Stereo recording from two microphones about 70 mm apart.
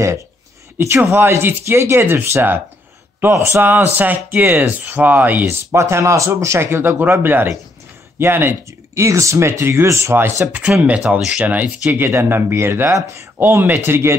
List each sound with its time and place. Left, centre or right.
0.7 s speech: right
3.6 s speech: right
8.6 s speech: right
10.1 s speech: right
11.0 s speech: centre
11.3 s speech: right
12.1 s speech: right
12.9 s speech: right
13.4 s speech: right